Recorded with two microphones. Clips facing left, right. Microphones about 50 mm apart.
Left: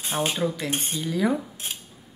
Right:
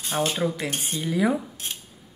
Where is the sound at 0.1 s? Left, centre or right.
Centre.